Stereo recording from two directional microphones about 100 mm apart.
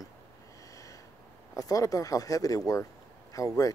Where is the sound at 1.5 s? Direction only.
35° left (ahead or behind).